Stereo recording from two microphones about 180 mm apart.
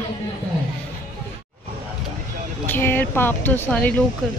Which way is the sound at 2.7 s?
10° left (ahead or behind).